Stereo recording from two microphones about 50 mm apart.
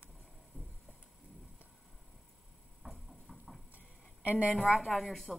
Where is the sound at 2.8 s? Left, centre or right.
Centre.